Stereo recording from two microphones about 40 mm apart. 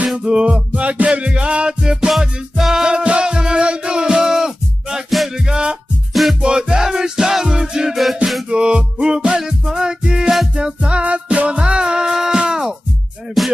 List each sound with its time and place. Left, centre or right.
0.1 s music: right
0.5 s music: right; by 2.9 s centre
2.9 s music: right
7.9 s music: centre
8.5 s music: right
13.4 s music: centre